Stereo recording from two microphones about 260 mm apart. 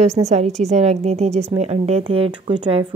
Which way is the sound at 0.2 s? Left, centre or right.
Right.